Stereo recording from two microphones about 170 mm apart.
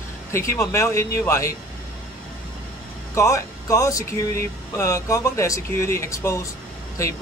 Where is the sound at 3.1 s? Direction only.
20° left (ahead or behind).